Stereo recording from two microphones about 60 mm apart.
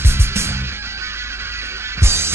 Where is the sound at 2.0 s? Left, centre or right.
Right.